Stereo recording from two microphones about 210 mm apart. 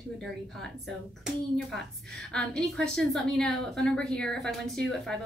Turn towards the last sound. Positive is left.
turn(degrees=0)  # may be behind; listen again after turning